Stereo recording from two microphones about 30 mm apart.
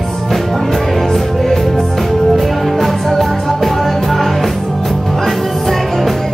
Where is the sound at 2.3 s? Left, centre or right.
Centre.